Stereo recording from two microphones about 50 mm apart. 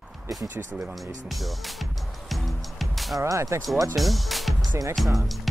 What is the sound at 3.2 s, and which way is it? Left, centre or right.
Speech, right.